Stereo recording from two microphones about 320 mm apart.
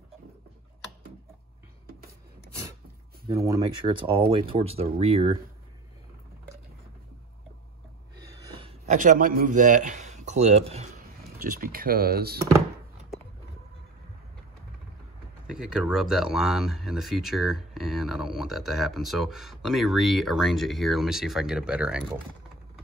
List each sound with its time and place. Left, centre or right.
1.9 s a sound: right
3.3 s speech: centre
8.2 s a man's voice: centre
15.4 s speech: centre